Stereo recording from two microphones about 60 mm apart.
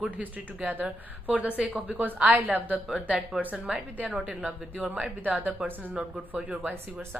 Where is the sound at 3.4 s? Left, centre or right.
Right.